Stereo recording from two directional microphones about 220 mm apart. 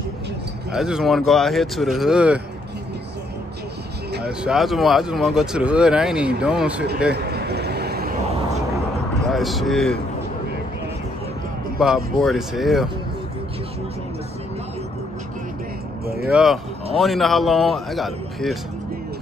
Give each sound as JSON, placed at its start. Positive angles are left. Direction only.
{"t": 0.7, "sound": "speech", "side_deg": 0}
{"t": 4.5, "sound": "speech", "side_deg": 0}
{"t": 7.1, "sound": "vehicle", "side_deg": -45}
{"t": 9.3, "sound": "speech", "side_deg": 0}
{"t": 11.8, "sound": "speech", "side_deg": 0}
{"t": 16.3, "sound": "speech", "side_deg": -5}